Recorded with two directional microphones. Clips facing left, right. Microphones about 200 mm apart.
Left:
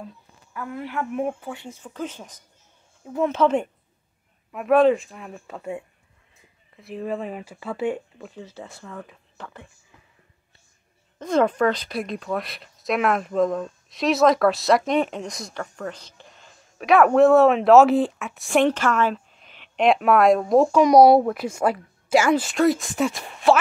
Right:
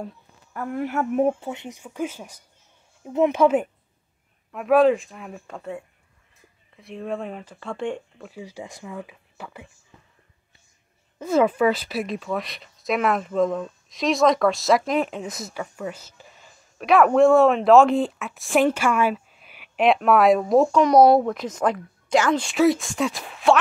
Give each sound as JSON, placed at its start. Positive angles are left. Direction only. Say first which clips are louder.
{"t": 0.5, "sound": "a woman's voice", "louder": "right 5 dB", "side_deg": -45}
{"t": 1.4, "sound": "speech", "louder": "right 2 dB", "side_deg": -20}
{"t": 4.5, "sound": "speech", "louder": "even", "side_deg": 0}
{"t": 5.6, "sound": "a woman's voice", "louder": "left 2 dB", "side_deg": 15}
{"t": 6.7, "sound": "speech", "louder": "left 1 dB", "side_deg": 0}
{"t": 8.3, "sound": "speech", "louder": "right 5 dB", "side_deg": -10}
{"t": 11.1, "sound": "speech", "louder": "right 1 dB", "side_deg": -5}
{"t": 20.8, "sound": "a woman's voice", "louder": "left 3 dB", "side_deg": 10}